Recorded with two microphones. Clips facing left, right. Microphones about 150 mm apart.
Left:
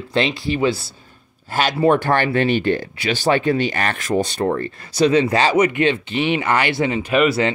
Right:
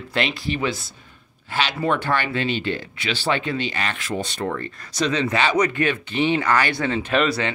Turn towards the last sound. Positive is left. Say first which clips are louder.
# left 4 dB
turn(degrees=5)  # may be behind; listen again after turning